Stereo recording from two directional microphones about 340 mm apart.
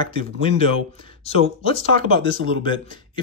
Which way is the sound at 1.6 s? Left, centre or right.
Centre.